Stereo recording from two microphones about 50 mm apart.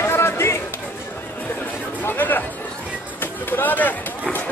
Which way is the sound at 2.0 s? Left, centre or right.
Left.